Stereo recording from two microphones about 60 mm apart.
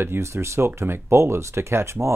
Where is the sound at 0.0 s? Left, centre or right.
Right.